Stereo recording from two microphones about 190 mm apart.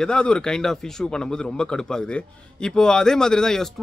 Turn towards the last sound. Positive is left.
turn(degrees=5)  # may be behind; listen again after turning